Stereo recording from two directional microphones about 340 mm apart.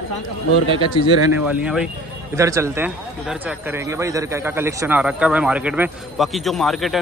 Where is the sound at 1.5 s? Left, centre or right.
Centre.